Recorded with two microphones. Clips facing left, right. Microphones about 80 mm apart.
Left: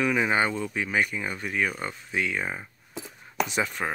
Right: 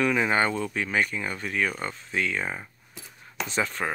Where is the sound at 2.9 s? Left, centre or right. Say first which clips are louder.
Left 6 dB; centre.